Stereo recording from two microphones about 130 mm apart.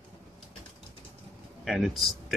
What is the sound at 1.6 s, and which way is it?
Speech, centre (ahead or behind).